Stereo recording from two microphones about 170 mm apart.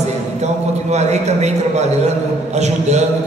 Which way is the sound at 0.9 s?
40° right (ahead or behind).